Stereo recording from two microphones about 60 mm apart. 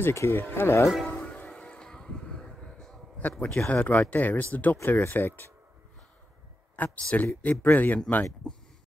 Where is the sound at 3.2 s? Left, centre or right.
Left.